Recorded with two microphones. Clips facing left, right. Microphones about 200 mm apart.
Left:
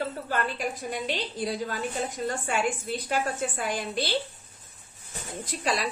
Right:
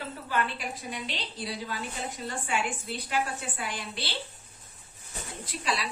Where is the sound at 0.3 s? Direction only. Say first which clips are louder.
Right 2 dB; 45° left (ahead or behind).